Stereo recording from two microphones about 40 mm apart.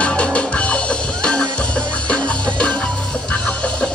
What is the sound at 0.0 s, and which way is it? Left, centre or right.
Music, left.